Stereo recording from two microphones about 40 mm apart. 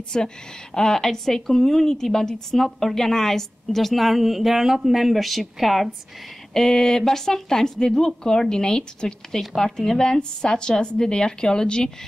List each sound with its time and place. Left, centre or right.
0.1 s a woman's voice: centre
6.5 s a woman's voice: centre